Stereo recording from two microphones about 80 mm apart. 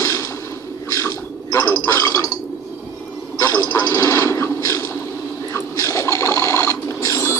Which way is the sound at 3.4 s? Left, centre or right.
Left.